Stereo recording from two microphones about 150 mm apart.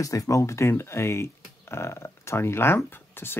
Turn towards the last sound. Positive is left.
turn(degrees=15)  # may be behind; listen again after turning